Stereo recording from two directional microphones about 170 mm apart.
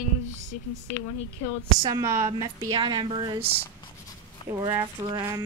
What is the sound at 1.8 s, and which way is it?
A woman's voice, 20° right (ahead or behind).